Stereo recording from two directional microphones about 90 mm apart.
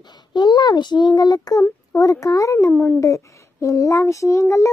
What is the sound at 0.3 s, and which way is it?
A child's voice, 55° left (ahead or behind).